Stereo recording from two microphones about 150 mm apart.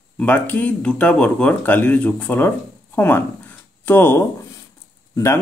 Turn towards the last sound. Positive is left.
turn(degrees=20)  # may be behind; listen again after turning